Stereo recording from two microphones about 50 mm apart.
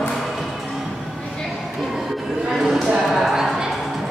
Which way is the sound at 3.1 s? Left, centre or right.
Centre.